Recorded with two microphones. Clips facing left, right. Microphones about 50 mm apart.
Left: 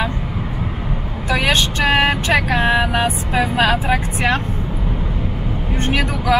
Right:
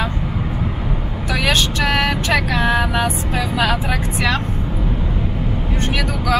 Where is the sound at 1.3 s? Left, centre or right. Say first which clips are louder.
Left 1 dB; left.